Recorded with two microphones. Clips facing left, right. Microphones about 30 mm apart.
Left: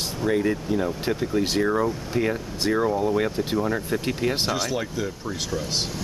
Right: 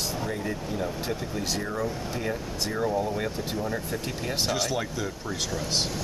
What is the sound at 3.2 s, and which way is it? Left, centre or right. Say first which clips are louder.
Speech: left 6 dB; left.